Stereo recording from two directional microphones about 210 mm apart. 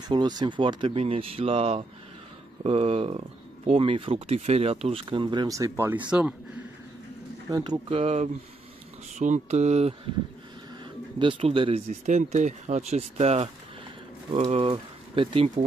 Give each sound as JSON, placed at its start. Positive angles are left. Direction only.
{"t": 0.1, "sound": "speech", "side_deg": -20}
{"t": 7.4, "sound": "speech", "side_deg": -15}
{"t": 8.0, "sound": "speech", "side_deg": -30}
{"t": 11.1, "sound": "speech", "side_deg": -25}